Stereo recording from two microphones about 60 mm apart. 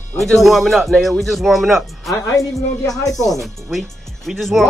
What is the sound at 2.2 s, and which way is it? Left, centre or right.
Speech, left.